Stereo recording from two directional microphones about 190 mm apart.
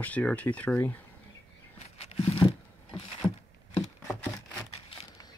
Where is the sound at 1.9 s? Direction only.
30° left (ahead or behind).